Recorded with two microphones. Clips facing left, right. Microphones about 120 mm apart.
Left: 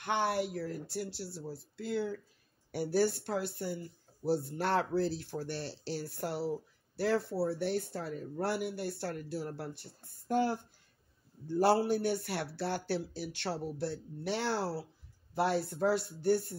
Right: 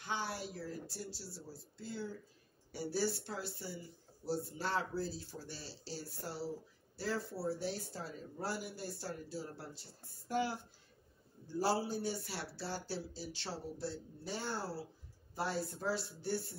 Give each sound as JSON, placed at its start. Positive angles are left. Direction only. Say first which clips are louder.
{"t": 0.0, "sound": "speech", "louder": "left 9 dB", "side_deg": 65}
{"t": 2.7, "sound": "speech", "louder": "left 7 dB", "side_deg": 60}
{"t": 11.4, "sound": "speech", "louder": "left 7 dB", "side_deg": 60}